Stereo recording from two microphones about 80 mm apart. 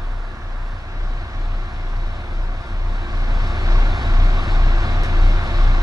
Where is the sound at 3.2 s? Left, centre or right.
Right.